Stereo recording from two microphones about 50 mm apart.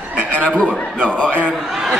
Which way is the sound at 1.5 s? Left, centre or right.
Centre.